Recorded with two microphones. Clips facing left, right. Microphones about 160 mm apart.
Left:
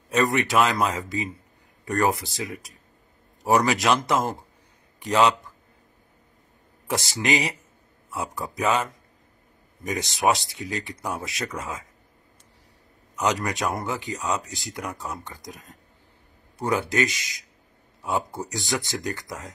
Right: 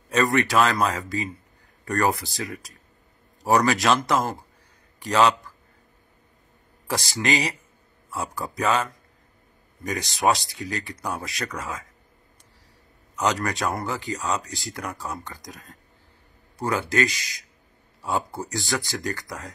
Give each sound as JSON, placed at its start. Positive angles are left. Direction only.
{"t": 0.1, "sound": "speech", "side_deg": 20}
{"t": 6.9, "sound": "speech", "side_deg": 20}
{"t": 8.5, "sound": "speech", "side_deg": 20}
{"t": 9.8, "sound": "speech", "side_deg": 20}
{"t": 13.1, "sound": "speech", "side_deg": 20}